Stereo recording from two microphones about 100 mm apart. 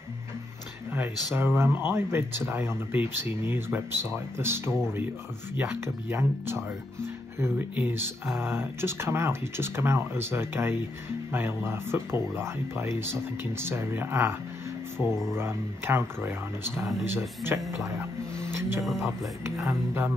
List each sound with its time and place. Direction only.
0.9 s speech: 20° right (ahead or behind)
8.4 s speech: 25° right (ahead or behind)
15.0 s speech: 5° right (ahead or behind)
15.3 s speech: 25° right (ahead or behind)
18.3 s music: 25° right (ahead or behind)
18.9 s speech: centre (ahead or behind)
19.4 s speech: 25° right (ahead or behind)